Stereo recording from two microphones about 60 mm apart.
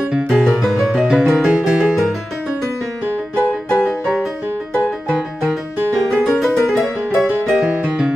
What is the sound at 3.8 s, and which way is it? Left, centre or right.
Music, centre.